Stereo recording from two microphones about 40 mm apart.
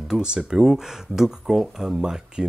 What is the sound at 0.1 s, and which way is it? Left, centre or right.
Speech, right.